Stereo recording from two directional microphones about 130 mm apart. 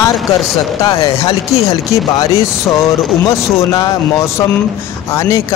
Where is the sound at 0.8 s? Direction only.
25° left (ahead or behind).